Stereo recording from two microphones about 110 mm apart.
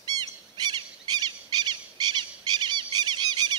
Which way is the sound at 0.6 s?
40° right (ahead or behind).